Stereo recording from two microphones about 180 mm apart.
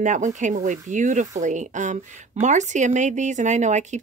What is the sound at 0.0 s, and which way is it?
Speech, 45° right (ahead or behind).